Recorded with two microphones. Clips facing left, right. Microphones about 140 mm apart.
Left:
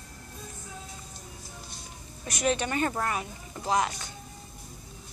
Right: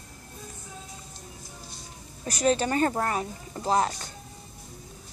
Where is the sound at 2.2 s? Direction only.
35° right (ahead or behind).